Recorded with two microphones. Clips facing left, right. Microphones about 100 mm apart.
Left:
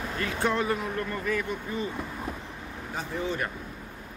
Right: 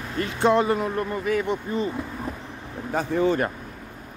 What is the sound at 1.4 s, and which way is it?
Speech, 25° right (ahead or behind).